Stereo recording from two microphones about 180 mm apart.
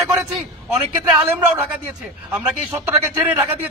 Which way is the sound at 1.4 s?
5° right (ahead or behind).